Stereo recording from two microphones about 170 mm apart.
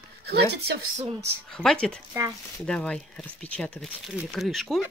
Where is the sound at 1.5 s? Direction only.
5° left (ahead or behind).